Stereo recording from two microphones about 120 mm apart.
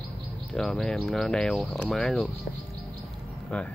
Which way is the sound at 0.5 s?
5° left (ahead or behind).